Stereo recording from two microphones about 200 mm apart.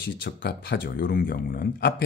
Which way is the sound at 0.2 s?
55° left (ahead or behind).